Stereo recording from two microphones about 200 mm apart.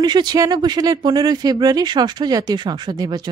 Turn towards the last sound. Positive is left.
turn(degrees=-20)  # may be behind; listen again after turning